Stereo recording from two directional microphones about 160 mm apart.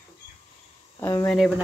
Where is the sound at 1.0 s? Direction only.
20° left (ahead or behind).